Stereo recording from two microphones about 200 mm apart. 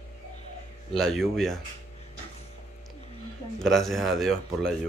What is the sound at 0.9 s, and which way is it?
Speech, centre (ahead or behind).